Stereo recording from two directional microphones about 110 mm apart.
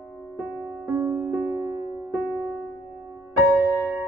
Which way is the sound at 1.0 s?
15° right (ahead or behind).